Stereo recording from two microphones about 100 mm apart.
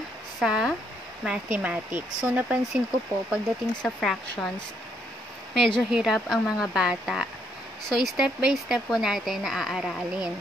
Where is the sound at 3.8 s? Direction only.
5° left (ahead or behind).